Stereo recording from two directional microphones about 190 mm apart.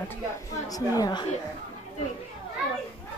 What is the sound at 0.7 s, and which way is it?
Speech, 20° left (ahead or behind).